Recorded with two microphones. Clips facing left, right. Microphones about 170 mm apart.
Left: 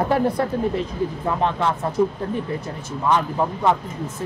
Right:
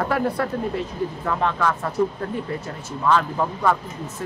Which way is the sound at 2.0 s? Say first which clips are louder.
Left 2 dB; 5° left (ahead or behind).